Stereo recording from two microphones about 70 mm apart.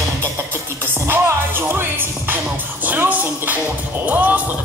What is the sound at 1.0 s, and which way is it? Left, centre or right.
Music, right.